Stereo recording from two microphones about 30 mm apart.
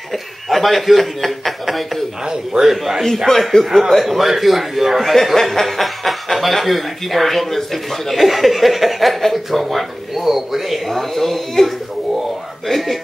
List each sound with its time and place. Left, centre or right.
0.1 s a man's voice: centre
2.2 s a man's voice: right
3.3 s speech: centre
3.6 s a man's voice: centre
5.1 s a man's voice: centre
10.9 s speech: centre